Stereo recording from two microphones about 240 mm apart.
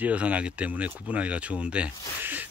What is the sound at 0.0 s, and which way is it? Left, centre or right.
Speech, centre.